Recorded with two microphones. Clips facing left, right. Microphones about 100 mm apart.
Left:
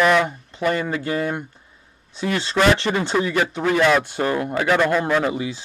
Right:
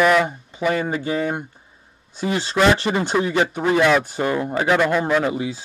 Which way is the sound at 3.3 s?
20° right (ahead or behind).